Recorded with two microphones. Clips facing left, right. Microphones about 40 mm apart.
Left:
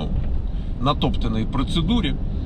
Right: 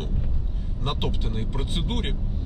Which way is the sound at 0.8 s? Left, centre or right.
Left.